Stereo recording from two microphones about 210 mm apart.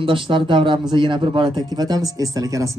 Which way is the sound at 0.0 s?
25° right (ahead or behind).